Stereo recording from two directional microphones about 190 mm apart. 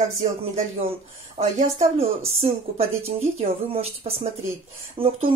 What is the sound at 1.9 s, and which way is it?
Speech, 30° right (ahead or behind).